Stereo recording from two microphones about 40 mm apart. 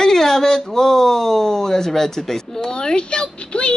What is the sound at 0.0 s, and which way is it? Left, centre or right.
Speech, centre.